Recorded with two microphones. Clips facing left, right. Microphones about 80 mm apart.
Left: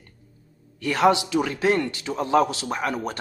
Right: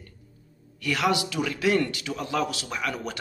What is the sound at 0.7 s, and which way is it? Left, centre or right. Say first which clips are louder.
Speech: left 6 dB; left.